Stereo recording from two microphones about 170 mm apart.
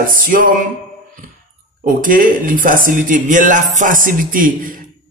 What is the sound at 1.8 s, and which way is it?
Speech, 55° right (ahead or behind).